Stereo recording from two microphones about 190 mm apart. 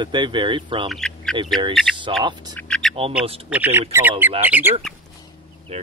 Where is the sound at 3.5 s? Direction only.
10° right (ahead or behind).